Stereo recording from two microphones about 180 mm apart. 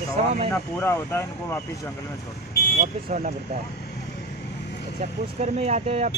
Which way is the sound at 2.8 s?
45° right (ahead or behind).